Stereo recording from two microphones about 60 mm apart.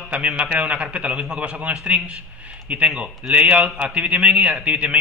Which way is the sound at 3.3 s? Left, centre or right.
Right.